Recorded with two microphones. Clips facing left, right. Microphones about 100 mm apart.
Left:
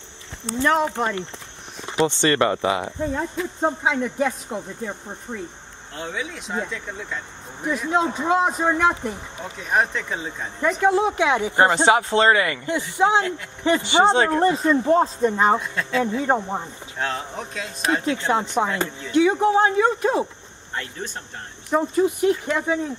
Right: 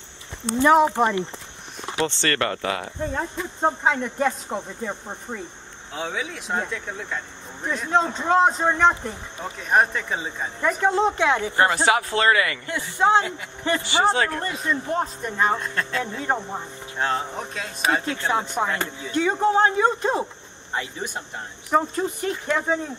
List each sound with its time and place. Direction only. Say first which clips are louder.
0.6 s speech: right 4 dB; 5° right (ahead or behind)
2.0 s speech: left 5 dB; 15° left (ahead or behind)
3.0 s speech: left 2 dB; centre (ahead or behind); by 15.5 s 25° left (ahead or behind)
15.5 s speech: left 3 dB; 5° left (ahead or behind)
18.0 s speech: left 3 dB; 15° left (ahead or behind)
20.7 s speech: right 2 dB; 10° right (ahead or behind)
21.7 s speech: left 2 dB; centre (ahead or behind)